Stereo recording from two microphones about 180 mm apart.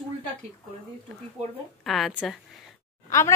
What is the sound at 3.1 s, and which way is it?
Speech, 15° left (ahead or behind).